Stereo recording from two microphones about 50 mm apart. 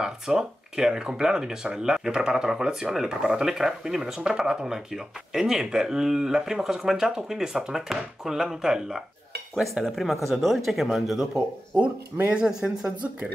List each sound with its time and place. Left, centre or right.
0.0 s speech: centre